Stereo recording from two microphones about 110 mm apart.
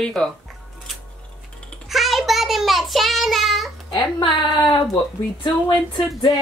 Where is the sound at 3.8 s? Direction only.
45° left (ahead or behind).